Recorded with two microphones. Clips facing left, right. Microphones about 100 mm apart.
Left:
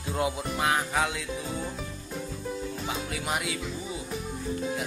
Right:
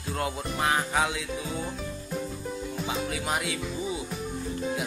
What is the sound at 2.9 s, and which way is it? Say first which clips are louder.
Speech: right 3 dB; centre (ahead or behind).